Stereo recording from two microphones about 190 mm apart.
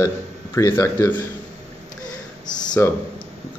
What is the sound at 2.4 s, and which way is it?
Speech, 20° left (ahead or behind).